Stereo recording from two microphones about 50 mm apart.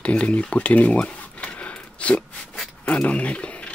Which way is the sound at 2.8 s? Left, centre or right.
Left.